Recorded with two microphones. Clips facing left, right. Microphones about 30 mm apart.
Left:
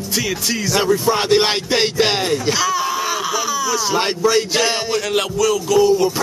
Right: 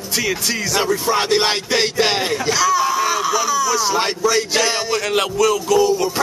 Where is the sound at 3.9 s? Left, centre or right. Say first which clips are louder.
Left 1 dB; centre.